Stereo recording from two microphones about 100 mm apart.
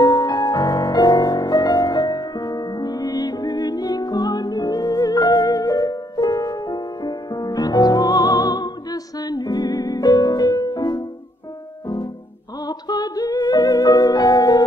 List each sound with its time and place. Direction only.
0.0 s music: 40° left (ahead or behind)
12.6 s music: 40° left (ahead or behind)